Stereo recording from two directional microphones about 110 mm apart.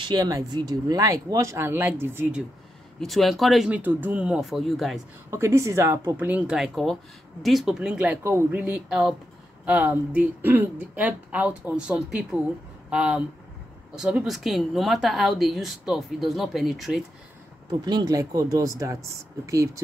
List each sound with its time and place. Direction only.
0.0 s speech: 40° right (ahead or behind); by 2.3 s 20° right (ahead or behind)
3.0 s speech: centre (ahead or behind)
3.7 s speech: 15° right (ahead or behind); by 5.0 s centre (ahead or behind)
5.3 s speech: 25° right (ahead or behind)
6.1 s speech: 15° right (ahead or behind)
6.5 s speech: centre (ahead or behind)
8.2 s speech: 25° right (ahead or behind); by 17.0 s centre (ahead or behind)
17.6 s speech: 40° right (ahead or behind)